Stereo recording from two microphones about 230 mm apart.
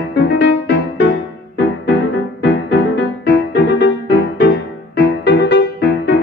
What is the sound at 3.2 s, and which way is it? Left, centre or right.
Music, left.